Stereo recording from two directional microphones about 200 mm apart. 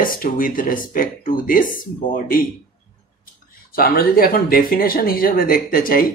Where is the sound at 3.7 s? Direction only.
45° left (ahead or behind).